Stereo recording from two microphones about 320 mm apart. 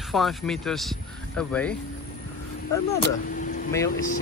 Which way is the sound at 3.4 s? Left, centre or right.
Left.